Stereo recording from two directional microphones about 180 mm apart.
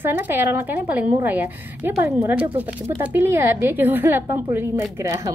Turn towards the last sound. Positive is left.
turn(degrees=-15)  # may be behind; listen again after turning